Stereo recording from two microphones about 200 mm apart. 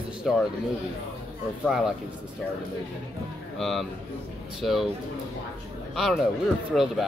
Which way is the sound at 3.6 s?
Centre (ahead or behind).